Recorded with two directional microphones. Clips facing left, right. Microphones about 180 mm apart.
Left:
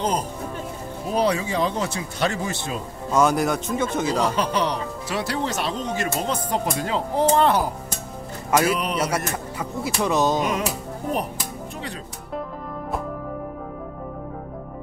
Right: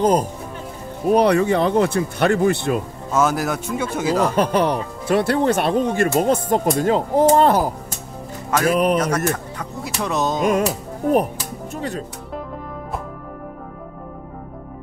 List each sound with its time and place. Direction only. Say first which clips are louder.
0.0 s speech: right 7 dB; 50° right (ahead or behind)
1.1 s speech: right 7 dB; 60° right (ahead or behind)
3.1 s speech: even; 5° right (ahead or behind)
4.2 s speech: right 7 dB; 50° right (ahead or behind)
9.0 s speech: right 4 dB; 10° left (ahead or behind)
11.7 s music: right 6 dB; 45° right (ahead or behind)